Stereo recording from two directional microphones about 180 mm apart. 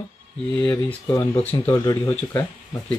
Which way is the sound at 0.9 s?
20° left (ahead or behind).